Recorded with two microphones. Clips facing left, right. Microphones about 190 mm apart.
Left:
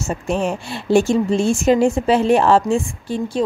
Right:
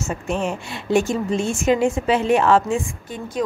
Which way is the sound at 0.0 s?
35° left (ahead or behind).